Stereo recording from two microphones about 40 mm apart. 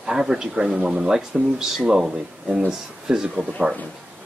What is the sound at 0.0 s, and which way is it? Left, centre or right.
A man's voice, centre.